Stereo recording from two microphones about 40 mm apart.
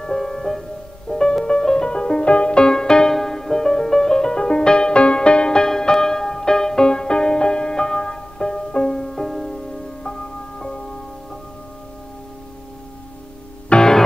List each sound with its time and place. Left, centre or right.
0.0 s music: centre
13.7 s music: left